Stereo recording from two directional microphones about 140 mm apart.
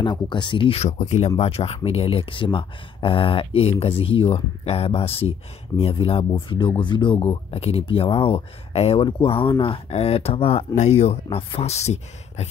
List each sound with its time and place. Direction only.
0.0 s speech: 35° left (ahead or behind)
0.8 s speech: 55° left (ahead or behind)
10.7 s speech: 55° left (ahead or behind)